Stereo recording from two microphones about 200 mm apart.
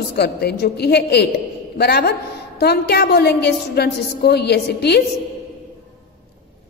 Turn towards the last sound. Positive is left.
turn(degrees=55)  # may be behind; listen again after turning